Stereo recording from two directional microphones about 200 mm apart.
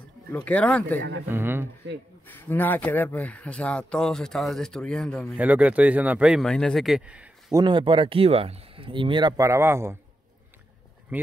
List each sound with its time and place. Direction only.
0.3 s speech: 5° left (ahead or behind)
1.3 s speech: 10° right (ahead or behind)
2.2 s speech: 10° left (ahead or behind)
5.4 s speech: 5° right (ahead or behind)
7.5 s speech: 25° right (ahead or behind)
11.1 s speech: 10° right (ahead or behind)